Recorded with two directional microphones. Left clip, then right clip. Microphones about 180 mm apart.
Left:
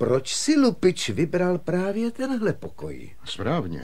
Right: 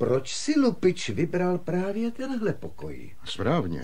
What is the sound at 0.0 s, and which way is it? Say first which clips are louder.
Speech: left 3 dB; 15° right (ahead or behind).